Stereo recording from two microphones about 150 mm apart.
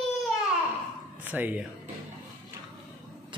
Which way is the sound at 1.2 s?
10° right (ahead or behind).